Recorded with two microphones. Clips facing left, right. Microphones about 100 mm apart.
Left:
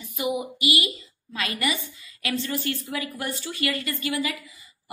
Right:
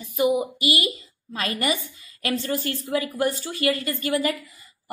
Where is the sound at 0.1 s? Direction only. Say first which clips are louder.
Right 6 dB; 40° right (ahead or behind).